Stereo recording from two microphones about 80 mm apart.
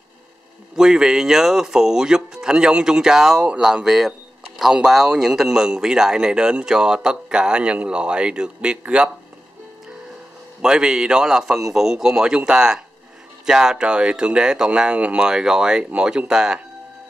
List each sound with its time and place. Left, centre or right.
0.7 s a man's voice: centre
10.6 s a man's voice: centre